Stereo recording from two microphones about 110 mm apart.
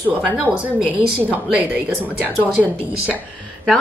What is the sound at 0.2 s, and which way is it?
Speech, 10° right (ahead or behind).